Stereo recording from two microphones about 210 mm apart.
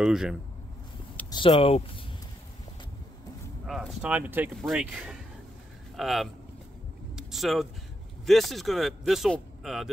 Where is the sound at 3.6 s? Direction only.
Centre (ahead or behind).